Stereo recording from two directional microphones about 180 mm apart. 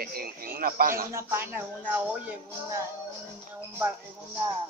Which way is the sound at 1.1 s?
15° right (ahead or behind).